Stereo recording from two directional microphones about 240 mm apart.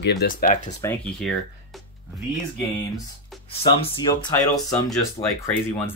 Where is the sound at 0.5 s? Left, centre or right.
Left.